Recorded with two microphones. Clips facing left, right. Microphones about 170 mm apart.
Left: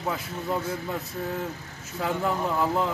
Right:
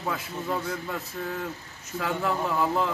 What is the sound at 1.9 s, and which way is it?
Speech, 20° left (ahead or behind).